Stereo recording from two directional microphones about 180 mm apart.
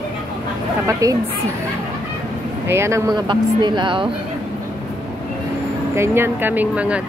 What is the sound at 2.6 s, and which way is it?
Speech, 15° right (ahead or behind).